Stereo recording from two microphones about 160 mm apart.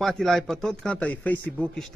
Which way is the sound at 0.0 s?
Centre (ahead or behind).